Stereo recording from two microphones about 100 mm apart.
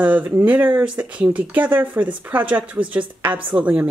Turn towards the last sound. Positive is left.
turn(degrees=-15)  # may be behind; listen again after turning